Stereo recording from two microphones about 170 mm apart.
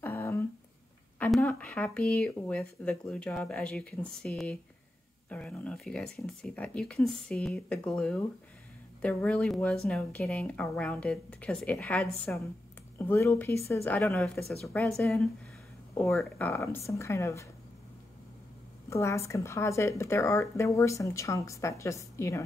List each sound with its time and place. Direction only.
0.0 s humming: 10° left (ahead or behind)
1.2 s speech: 10° left (ahead or behind)
13.0 s speech: 15° left (ahead or behind)
16.1 s speech: centre (ahead or behind)
16.4 s speech: 15° left (ahead or behind)
18.9 s speech: 15° left (ahead or behind)